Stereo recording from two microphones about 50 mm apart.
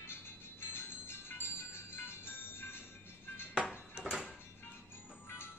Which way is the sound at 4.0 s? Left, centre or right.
Centre.